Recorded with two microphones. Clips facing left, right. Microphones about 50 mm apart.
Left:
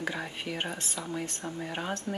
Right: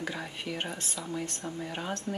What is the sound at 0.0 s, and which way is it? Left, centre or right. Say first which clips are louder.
Speech: left 2 dB; centre.